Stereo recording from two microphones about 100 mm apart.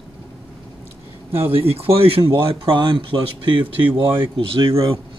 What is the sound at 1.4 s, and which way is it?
Speech, 75° right (ahead or behind).